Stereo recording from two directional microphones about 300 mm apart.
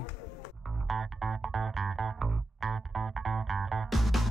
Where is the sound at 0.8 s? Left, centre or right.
Centre.